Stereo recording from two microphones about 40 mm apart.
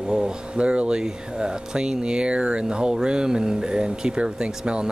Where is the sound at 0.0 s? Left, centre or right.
Right.